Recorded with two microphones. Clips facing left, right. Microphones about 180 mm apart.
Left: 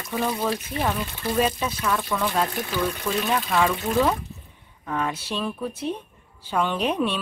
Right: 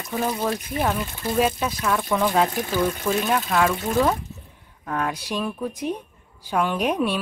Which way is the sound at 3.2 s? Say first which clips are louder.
Even; 5° right (ahead or behind).